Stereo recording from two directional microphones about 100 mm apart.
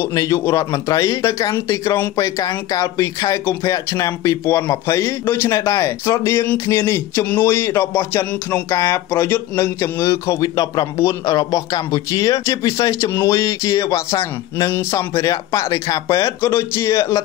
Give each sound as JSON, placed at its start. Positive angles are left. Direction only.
{"t": 0.1, "sound": "speech", "side_deg": 40}
{"t": 6.7, "sound": "a sound", "side_deg": 25}
{"t": 8.3, "sound": "music", "side_deg": 15}
{"t": 8.7, "sound": "speech", "side_deg": 30}